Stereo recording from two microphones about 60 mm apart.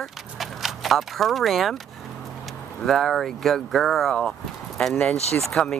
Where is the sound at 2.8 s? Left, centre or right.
Centre.